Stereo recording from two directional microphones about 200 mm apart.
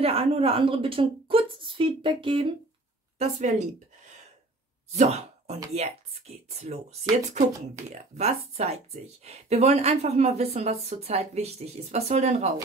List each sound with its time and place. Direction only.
0.0 s a woman's voice: 30° right (ahead or behind)
3.2 s speech: 35° right (ahead or behind)
4.9 s speech: 30° right (ahead or behind)